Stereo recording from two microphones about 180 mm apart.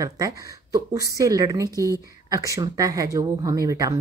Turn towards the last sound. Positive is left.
turn(degrees=-20)  # may be behind; listen again after turning